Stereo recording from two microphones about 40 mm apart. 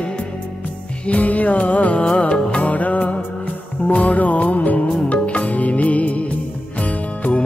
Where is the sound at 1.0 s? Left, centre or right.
Left.